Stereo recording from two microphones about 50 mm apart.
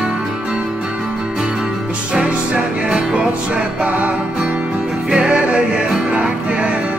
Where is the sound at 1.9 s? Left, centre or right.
Right.